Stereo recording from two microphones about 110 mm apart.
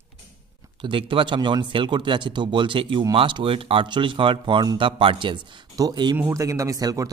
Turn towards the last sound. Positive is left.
turn(degrees=-35)  # may be behind; listen again after turning